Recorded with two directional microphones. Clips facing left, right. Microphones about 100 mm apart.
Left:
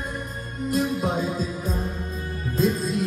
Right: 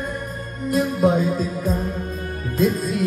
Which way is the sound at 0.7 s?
50° right (ahead or behind).